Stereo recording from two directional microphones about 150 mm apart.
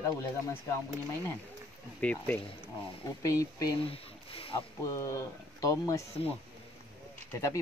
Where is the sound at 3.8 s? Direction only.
40° left (ahead or behind).